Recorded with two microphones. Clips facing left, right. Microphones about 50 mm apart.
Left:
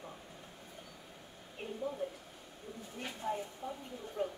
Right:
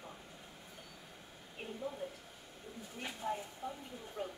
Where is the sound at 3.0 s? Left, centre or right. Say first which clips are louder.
Left 2 dB; centre.